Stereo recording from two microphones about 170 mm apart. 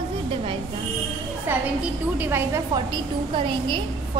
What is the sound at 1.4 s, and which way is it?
A woman's voice, 10° right (ahead or behind).